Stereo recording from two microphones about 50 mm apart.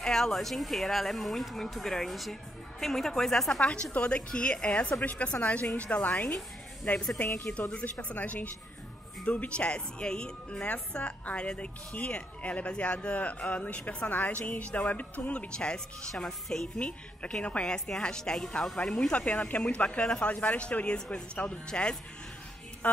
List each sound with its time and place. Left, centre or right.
0.0 s a woman's voice: centre
3.9 s a woman's voice: left
7.7 s a woman's voice: left; by 16.8 s centre
16.8 s a woman's voice: left
17.7 s a woman's voice: centre